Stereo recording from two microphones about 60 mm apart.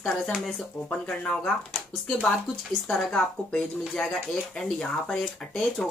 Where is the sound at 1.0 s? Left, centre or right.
Centre.